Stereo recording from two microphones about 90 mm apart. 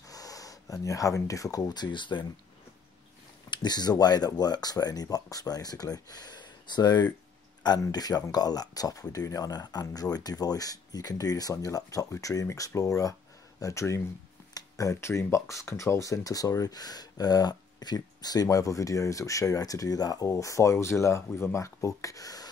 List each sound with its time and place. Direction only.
0.1 s speech: 40° left (ahead or behind); by 2.2 s 60° left (ahead or behind)
3.4 s speech: 55° left (ahead or behind); by 14.0 s 35° left (ahead or behind)
14.5 s a sound: 35° left (ahead or behind)
15.3 s speech: 35° left (ahead or behind)